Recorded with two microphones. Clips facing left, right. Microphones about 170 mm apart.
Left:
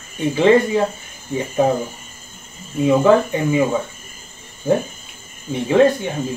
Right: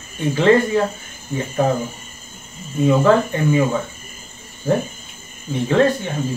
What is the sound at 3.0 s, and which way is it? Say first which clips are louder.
Speech: left 1 dB; 15° left (ahead or behind).